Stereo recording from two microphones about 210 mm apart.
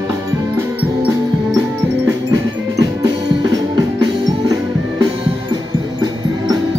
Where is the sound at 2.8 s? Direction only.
15° right (ahead or behind).